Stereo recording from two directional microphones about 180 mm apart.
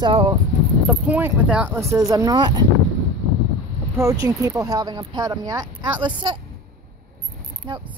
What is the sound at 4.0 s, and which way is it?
Speech, 20° right (ahead or behind).